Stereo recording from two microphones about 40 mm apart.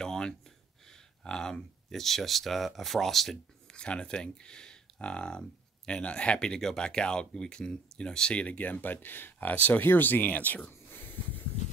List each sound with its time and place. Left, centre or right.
0.0 s gasp: centre
0.8 s speech: centre
3.7 s speech: left
8.5 s speech: left
10.7 s a sound: left